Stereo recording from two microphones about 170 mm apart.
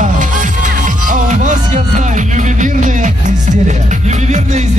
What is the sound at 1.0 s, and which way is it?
Music, 45° right (ahead or behind).